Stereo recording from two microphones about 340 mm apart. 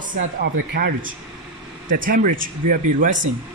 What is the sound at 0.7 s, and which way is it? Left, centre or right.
Speech, right.